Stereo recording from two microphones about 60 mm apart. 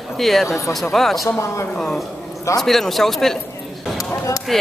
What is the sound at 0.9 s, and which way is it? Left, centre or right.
Speech, centre.